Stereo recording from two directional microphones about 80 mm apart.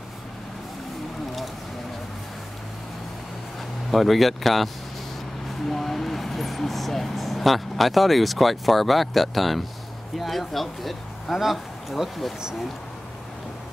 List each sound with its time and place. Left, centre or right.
3.9 s speech: centre
5.7 s speech: centre